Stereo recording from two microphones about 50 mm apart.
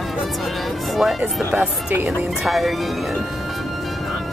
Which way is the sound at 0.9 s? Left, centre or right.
Centre.